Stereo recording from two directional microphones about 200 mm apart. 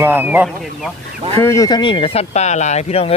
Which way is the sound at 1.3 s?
15° left (ahead or behind).